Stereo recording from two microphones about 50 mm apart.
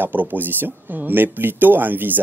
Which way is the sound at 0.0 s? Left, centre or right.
Right.